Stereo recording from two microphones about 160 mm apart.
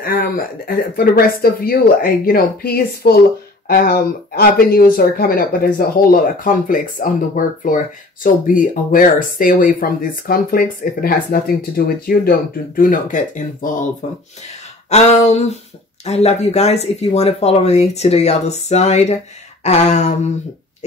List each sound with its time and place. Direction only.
0.0 s speech: 65° left (ahead or behind)
14.9 s speech: 45° left (ahead or behind)